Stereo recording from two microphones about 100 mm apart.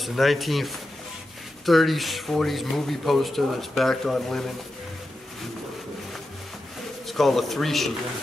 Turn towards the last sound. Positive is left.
turn(degrees=0)  # may be behind; listen again after turning